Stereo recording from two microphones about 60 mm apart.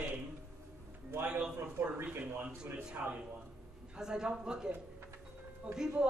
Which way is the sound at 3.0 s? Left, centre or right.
Right.